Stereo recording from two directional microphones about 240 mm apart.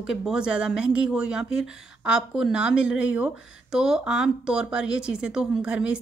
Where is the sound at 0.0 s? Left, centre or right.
Centre.